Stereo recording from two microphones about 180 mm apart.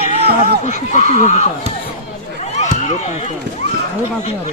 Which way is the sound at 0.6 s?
40° left (ahead or behind).